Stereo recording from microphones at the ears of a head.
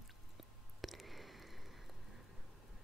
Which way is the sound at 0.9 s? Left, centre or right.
Centre.